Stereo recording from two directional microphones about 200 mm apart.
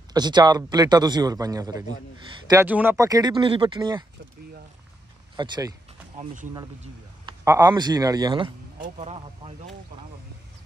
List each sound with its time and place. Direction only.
0.1 s a man's voice: 20° right (ahead or behind)
5.3 s speech: 20° right (ahead or behind)
6.1 s speech: 40° right (ahead or behind)
7.2 s a man's voice: 15° right (ahead or behind)
8.7 s speech: 40° right (ahead or behind)